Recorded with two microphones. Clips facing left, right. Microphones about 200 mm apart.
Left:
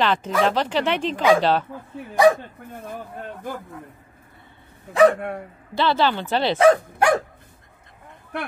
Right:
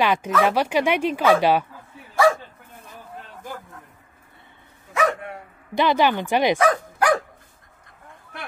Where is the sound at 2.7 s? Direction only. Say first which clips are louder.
Left 8 dB; 55° left (ahead or behind).